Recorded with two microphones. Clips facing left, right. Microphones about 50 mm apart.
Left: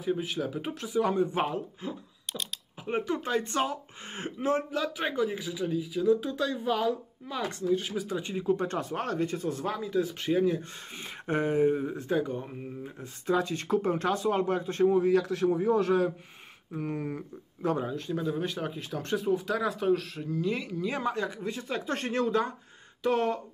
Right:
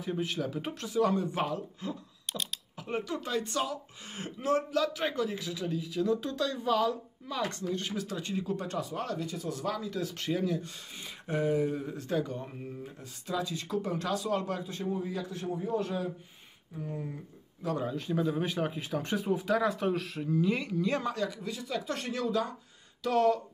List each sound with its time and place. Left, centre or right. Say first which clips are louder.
0.0 s speech: left 3 dB; centre; by 2.0 s left
2.2 s typing: even; centre
2.9 s speech: left 4 dB; left
8.5 s speech: left 3 dB; left
11.2 s speech: left 4 dB; left; by 12.9 s centre
13.3 s speech: left 6 dB; left
14.9 s a man's voice: left 10 dB; left
17.8 s speech: right 1 dB; centre
21.1 s speech: left 2 dB; left